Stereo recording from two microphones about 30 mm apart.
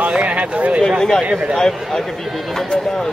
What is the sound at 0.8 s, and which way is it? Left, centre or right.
Speech, centre.